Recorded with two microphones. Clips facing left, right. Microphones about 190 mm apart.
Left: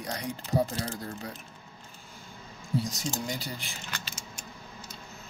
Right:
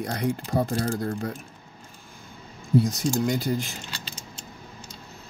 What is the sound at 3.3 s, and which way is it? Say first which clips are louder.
Speech: right 11 dB; 50° right (ahead or behind).